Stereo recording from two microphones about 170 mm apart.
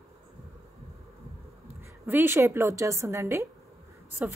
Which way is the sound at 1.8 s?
15° right (ahead or behind).